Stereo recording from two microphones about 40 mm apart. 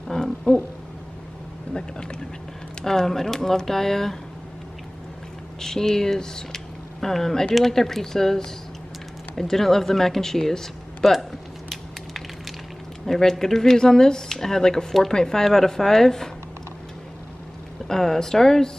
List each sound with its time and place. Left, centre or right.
0.1 s speech: centre
1.7 s speech: centre
5.6 s speech: centre
13.0 s speech: centre
17.8 s speech: centre